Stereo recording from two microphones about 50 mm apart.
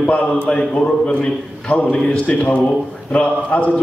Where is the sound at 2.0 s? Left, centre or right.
Left.